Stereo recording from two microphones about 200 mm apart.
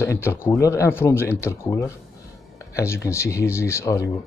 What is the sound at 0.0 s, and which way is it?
Speech, 10° left (ahead or behind).